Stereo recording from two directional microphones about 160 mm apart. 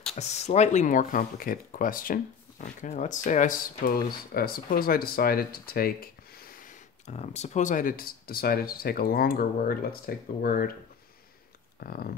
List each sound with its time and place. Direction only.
0.1 s speech: 45° left (ahead or behind); by 6.7 s 65° left (ahead or behind)
7.1 s speech: 45° left (ahead or behind); by 10.7 s 65° left (ahead or behind)
11.8 s speech: 65° left (ahead or behind)